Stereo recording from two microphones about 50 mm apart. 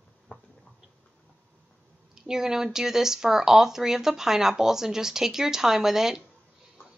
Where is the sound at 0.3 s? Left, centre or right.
Left.